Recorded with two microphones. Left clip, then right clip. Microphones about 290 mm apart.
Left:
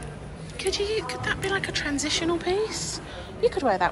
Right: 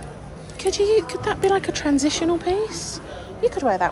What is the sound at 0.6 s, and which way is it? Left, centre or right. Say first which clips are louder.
Speech: right 8 dB; centre.